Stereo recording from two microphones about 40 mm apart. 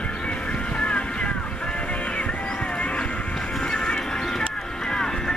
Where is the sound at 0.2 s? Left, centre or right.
Left.